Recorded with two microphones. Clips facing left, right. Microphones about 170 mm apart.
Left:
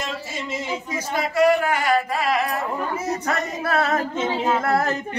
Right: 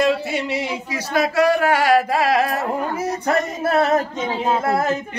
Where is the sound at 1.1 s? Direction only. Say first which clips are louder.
Right 1 dB; 80° right.